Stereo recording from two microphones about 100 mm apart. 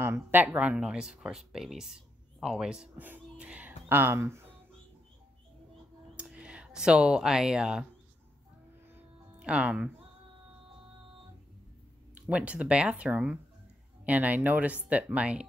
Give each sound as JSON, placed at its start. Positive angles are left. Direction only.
{"t": 0.0, "sound": "speech", "side_deg": -20}
{"t": 6.1, "sound": "speech", "side_deg": -10}
{"t": 9.4, "sound": "speech", "side_deg": -10}
{"t": 12.3, "sound": "speech", "side_deg": -15}